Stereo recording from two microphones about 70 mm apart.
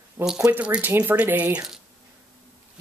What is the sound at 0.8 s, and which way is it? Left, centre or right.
Speech, right.